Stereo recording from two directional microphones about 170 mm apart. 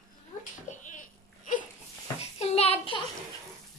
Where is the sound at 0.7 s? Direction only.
45° left (ahead or behind).